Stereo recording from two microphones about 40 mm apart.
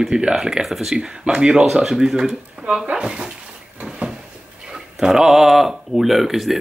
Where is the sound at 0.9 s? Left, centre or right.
Centre.